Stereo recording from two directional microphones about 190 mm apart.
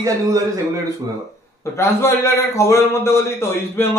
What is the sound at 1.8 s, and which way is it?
A man's voice, 15° left (ahead or behind).